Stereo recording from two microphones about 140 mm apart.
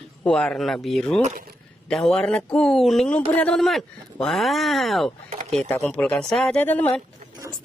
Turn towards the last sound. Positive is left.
turn(degrees=15)  # may be behind; listen again after turning